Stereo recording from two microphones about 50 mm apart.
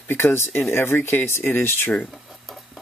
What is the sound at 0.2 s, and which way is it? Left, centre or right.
Speech, left.